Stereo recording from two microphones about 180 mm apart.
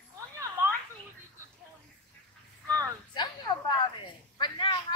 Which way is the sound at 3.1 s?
25° left (ahead or behind).